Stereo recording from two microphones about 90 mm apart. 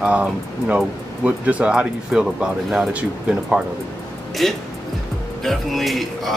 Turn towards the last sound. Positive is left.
turn(degrees=0)  # may be behind; listen again after turning